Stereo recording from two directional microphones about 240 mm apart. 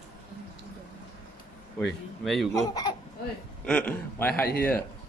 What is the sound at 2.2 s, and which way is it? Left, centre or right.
Speech, centre.